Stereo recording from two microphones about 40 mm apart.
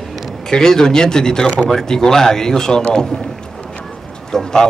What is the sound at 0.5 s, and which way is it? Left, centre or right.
Speech, centre.